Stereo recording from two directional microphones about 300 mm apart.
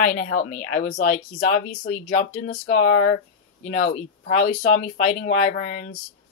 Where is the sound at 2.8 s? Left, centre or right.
Left.